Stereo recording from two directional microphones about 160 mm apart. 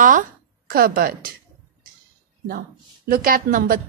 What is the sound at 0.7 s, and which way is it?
Speech, 65° right (ahead or behind).